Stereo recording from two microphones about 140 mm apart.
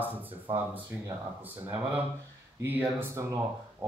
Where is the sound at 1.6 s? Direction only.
15° right (ahead or behind).